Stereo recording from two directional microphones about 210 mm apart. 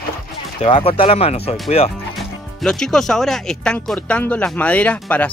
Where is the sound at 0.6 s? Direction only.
25° left (ahead or behind).